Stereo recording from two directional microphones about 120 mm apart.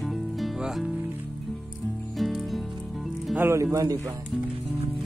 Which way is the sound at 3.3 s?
20° right (ahead or behind).